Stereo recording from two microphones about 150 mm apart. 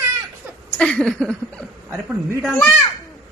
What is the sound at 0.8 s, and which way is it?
Speech, 5° left (ahead or behind).